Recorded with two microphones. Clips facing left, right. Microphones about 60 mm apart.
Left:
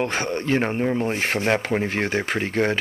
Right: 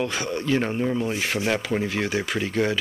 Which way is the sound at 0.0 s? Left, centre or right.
Left.